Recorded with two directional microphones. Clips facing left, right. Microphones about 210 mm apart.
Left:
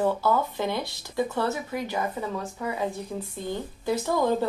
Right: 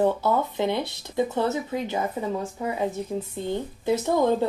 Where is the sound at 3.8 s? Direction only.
20° right (ahead or behind).